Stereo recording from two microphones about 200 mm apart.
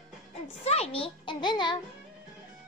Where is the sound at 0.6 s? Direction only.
30° left (ahead or behind).